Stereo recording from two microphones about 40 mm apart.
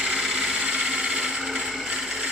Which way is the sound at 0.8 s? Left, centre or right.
Centre.